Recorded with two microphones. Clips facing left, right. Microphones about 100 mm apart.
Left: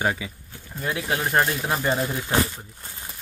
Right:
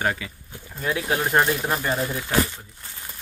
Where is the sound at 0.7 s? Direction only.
Centre (ahead or behind).